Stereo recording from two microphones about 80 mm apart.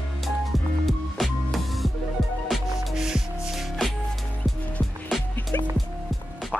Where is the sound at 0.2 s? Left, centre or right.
Centre.